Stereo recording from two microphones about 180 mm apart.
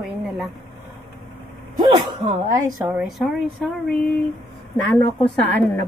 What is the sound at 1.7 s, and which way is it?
Vehicle, 25° right (ahead or behind).